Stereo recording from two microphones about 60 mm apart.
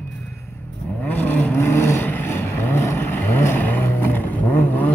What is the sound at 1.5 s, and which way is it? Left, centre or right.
Vehicle, left.